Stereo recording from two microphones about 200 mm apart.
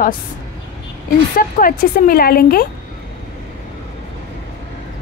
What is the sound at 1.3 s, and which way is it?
Speech, 45° left (ahead or behind).